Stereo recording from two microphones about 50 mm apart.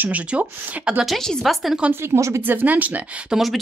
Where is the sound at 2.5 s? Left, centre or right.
Right.